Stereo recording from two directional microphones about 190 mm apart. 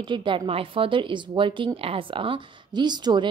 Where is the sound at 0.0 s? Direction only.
25° right (ahead or behind).